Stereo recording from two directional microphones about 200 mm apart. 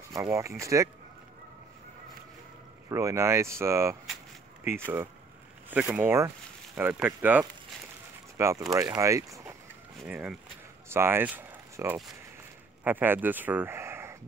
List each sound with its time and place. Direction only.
0.1 s speech: 15° right (ahead or behind)
2.9 s speech: 15° right (ahead or behind)